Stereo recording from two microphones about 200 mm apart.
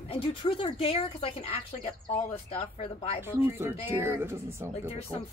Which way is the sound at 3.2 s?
10° right (ahead or behind).